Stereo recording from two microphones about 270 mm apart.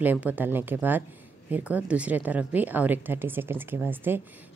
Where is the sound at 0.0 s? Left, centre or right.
Centre.